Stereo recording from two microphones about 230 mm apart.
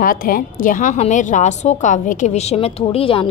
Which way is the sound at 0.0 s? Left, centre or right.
Left.